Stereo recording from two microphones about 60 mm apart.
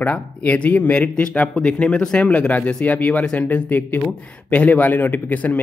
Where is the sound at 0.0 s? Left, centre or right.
Left.